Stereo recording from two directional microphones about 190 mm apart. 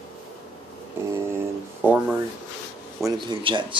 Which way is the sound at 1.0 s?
10° right (ahead or behind).